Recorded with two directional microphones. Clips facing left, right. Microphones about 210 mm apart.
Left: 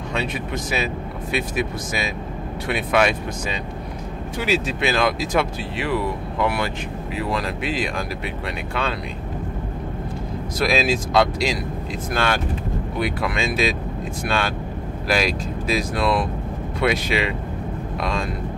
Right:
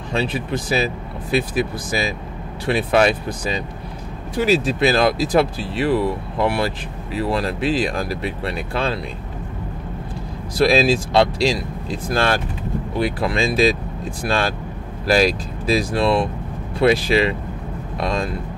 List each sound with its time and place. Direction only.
0.1 s speech: 30° right (ahead or behind)
10.6 s speech: 30° right (ahead or behind)